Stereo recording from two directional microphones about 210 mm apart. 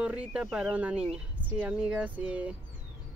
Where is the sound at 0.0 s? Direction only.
5° right (ahead or behind).